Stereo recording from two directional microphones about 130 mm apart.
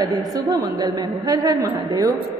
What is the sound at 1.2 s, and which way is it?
Speech, 30° right (ahead or behind).